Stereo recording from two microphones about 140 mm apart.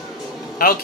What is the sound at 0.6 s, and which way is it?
Speech, 90° left.